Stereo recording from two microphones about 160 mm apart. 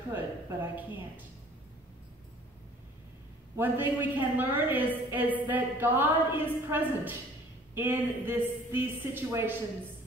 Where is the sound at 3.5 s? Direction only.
10° right (ahead or behind).